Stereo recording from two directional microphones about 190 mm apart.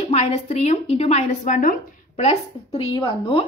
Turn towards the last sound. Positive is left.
turn(degrees=25)  # may be behind; listen again after turning